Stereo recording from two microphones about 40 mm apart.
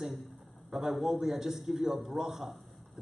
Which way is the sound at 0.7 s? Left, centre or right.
Centre.